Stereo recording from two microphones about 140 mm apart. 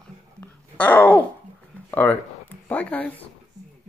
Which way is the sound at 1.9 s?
15° left (ahead or behind).